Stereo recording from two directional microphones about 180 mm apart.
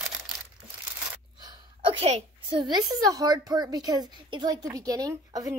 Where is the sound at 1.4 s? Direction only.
25° right (ahead or behind).